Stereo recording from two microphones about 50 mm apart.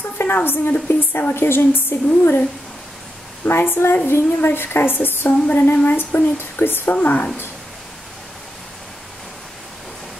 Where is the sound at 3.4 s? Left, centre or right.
Left.